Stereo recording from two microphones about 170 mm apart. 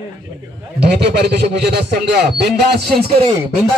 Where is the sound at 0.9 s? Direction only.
80° right.